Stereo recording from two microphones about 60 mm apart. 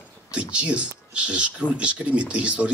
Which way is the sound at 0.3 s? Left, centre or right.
Centre.